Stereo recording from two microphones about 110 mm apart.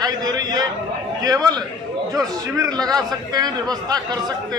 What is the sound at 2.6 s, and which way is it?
Speech, 35° right (ahead or behind).